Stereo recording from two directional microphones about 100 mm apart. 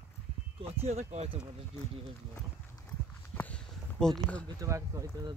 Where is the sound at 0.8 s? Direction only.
90° right.